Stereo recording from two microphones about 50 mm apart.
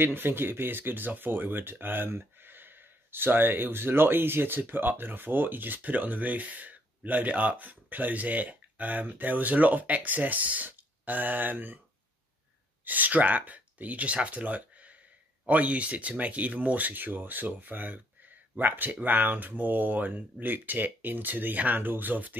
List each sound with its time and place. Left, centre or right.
0.0 s speech: right
12.8 s speech: right